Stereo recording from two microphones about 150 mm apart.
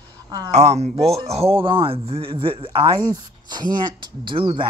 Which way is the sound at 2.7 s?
25° right (ahead or behind).